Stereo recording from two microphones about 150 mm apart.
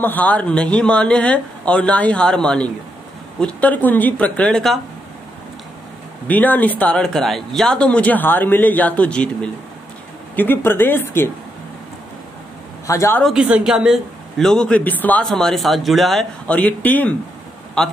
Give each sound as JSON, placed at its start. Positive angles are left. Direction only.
{"t": 0.0, "sound": "speech", "side_deg": 10}
{"t": 6.2, "sound": "speech", "side_deg": 10}
{"t": 12.8, "sound": "speech", "side_deg": 20}
{"t": 13.2, "sound": "speech", "side_deg": -5}